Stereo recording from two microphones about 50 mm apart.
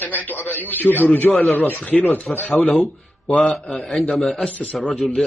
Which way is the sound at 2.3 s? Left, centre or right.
Centre.